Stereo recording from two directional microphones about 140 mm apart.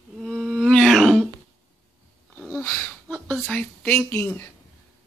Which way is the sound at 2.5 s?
15° left (ahead or behind).